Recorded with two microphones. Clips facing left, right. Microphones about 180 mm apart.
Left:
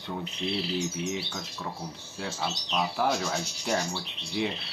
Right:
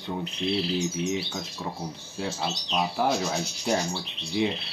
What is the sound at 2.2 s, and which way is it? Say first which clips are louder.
Rub: right 3 dB; 15° right (ahead or behind).